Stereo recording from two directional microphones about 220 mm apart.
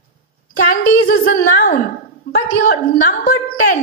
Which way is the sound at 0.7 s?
40° left (ahead or behind).